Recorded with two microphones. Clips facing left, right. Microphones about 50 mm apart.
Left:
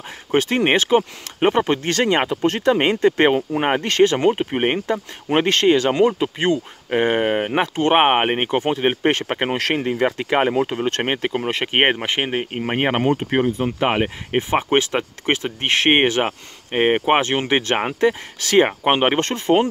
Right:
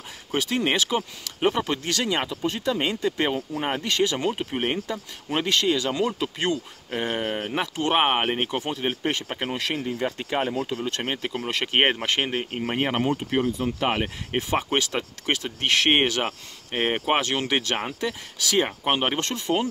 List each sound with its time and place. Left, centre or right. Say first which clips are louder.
0.3 s speech: left 7 dB; left
2.4 s speech: left 9 dB; left
6.0 s speech: left 7 dB; left
6.9 s speech: left 9 dB; left
9.8 s speech: left 8 dB; left
11.3 s speech: left 1 dB; left
12.7 s speech: left 6 dB; left